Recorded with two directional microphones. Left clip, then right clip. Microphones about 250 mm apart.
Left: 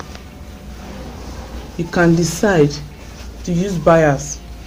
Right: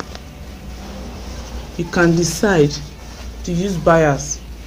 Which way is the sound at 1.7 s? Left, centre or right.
Centre.